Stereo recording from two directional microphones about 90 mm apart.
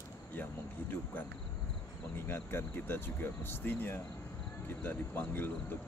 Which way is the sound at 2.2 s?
25° left (ahead or behind).